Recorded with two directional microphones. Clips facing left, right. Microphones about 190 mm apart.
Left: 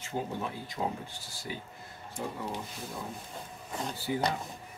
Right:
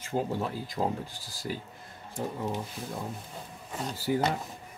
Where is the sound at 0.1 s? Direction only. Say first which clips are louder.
Right 4 dB; 30° right (ahead or behind).